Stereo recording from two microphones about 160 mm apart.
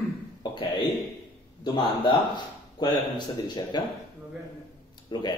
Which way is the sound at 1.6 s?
30° left (ahead or behind).